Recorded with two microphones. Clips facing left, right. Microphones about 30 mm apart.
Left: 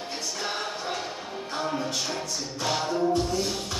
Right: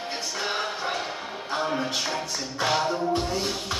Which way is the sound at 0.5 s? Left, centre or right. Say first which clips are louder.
Right 4 dB; right.